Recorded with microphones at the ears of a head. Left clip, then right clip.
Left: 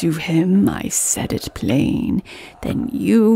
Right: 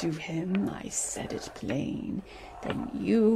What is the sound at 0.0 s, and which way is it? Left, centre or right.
Speech, left.